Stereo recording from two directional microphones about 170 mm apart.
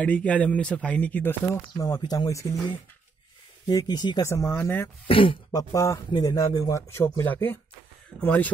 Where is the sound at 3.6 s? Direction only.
25° left (ahead or behind).